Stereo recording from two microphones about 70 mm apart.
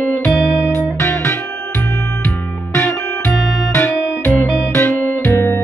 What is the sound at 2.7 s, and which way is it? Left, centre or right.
Music, left.